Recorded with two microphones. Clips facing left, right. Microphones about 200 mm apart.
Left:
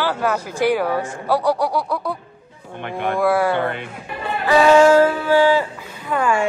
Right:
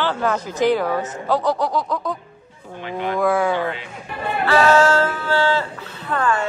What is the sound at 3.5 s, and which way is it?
Speech, 60° left (ahead or behind).